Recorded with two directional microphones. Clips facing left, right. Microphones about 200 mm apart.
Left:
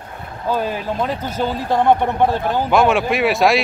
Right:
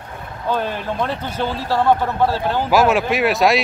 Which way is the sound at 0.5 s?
10° left (ahead or behind).